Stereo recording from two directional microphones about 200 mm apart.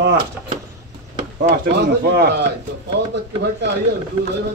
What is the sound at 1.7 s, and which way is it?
Speech, 55° right (ahead or behind).